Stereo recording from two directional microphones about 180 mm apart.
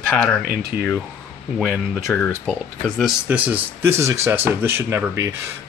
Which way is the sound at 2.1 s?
10° left (ahead or behind).